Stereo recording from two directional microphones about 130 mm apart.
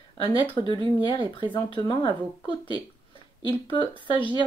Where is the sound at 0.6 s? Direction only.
40° right (ahead or behind).